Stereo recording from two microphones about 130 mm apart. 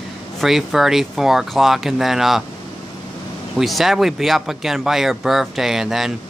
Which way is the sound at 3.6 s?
Centre (ahead or behind).